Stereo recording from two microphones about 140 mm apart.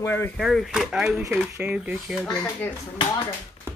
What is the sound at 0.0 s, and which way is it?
Speech, 15° left (ahead or behind).